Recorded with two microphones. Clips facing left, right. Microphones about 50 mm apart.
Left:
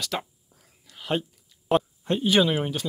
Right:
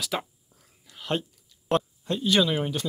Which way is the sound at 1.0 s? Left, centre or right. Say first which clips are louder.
Left 1 dB; centre.